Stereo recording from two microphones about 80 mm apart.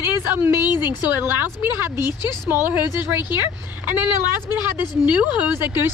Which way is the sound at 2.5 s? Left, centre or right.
Right.